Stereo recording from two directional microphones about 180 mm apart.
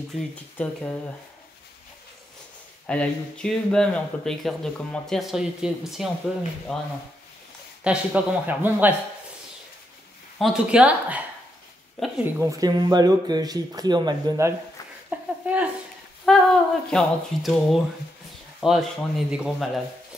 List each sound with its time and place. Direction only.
0.1 s speech: 5° left (ahead or behind)
2.9 s speech: 5° left (ahead or behind); by 8.9 s 10° right (ahead or behind)
10.4 s speech: 5° right (ahead or behind)
15.0 s a sound: 5° right (ahead or behind)
16.3 s speech: centre (ahead or behind)